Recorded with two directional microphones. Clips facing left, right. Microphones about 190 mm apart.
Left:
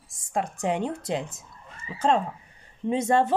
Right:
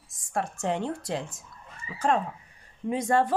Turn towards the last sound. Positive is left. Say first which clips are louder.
# left 2 dB
turn(degrees=25)  # may be behind; listen again after turning